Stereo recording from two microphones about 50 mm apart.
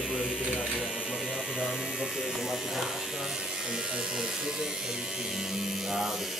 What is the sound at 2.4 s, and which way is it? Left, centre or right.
Speech, centre.